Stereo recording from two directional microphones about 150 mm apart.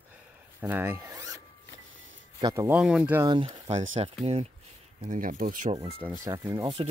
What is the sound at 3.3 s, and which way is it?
Speech, 35° right (ahead or behind).